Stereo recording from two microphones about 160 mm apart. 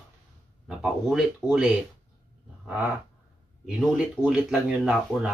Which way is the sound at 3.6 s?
5° right (ahead or behind).